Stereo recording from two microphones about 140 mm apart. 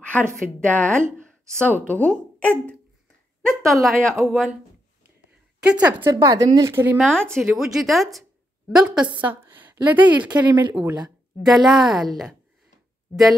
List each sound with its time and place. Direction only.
0.0 s a sound: 10° left (ahead or behind)
0.6 s a woman's voice: 10° left (ahead or behind)
1.0 s a sound: 20° right (ahead or behind)
1.6 s a woman's voice: 10° left (ahead or behind)
3.6 s a woman's voice: centre (ahead or behind)
5.6 s a woman's voice: 10° right (ahead or behind)
6.1 s speech: 25° right (ahead or behind)
7.0 s a woman's voice: 5° left (ahead or behind)